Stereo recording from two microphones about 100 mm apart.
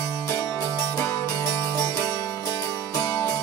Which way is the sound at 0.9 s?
30° left (ahead or behind).